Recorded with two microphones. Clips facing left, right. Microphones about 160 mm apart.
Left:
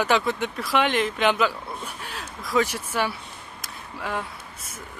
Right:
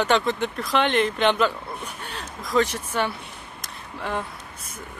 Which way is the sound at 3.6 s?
Centre (ahead or behind).